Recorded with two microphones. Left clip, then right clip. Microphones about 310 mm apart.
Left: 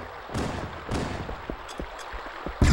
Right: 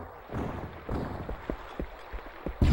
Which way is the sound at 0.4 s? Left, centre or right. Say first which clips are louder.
Left 5 dB; left.